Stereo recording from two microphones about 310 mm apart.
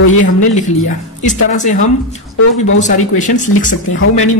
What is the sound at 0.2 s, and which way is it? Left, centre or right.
Speech, left.